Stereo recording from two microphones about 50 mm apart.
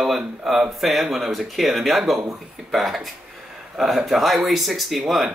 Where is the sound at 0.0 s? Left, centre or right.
Centre.